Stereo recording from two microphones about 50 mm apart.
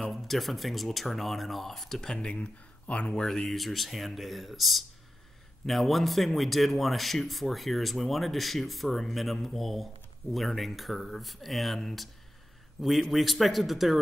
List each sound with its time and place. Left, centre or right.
0.1 s speech: centre
2.3 s speech: left
3.4 s speech: centre